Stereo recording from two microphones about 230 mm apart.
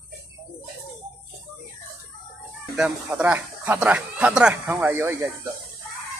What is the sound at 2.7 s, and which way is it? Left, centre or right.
Speech, centre.